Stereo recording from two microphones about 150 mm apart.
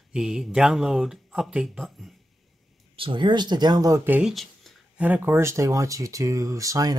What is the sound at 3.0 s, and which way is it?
Speech, 35° right (ahead or behind).